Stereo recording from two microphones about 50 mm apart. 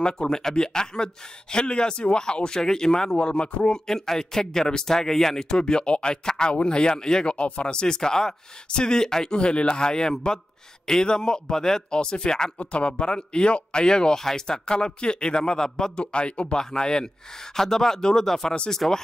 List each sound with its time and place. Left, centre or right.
0.0 s speech: centre
3.8 s speech: centre